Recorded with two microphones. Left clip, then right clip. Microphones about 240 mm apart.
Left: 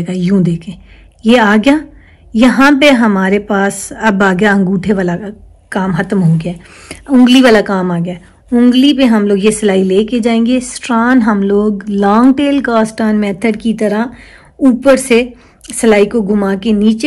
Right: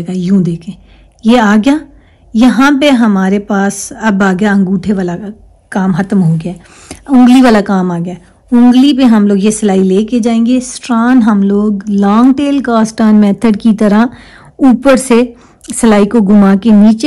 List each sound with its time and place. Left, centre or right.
0.0 s a woman's voice: centre